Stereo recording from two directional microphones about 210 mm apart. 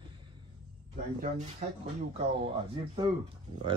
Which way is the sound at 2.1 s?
25° right (ahead or behind).